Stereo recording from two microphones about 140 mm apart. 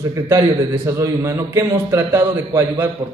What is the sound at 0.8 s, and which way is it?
A man's voice, 20° right (ahead or behind).